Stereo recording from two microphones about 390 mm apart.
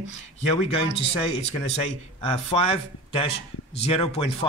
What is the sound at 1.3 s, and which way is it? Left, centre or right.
A man's voice, centre.